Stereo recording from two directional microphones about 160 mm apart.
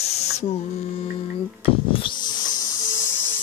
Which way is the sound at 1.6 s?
35° left (ahead or behind).